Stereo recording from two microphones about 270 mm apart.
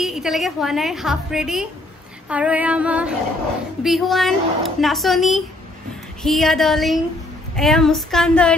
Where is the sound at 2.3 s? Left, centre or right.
Centre.